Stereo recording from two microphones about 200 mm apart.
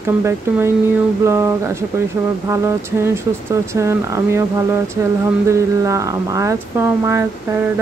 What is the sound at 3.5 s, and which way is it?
Speech, 15° right (ahead or behind).